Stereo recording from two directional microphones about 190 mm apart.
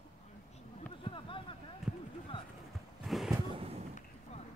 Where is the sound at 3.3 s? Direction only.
25° right (ahead or behind).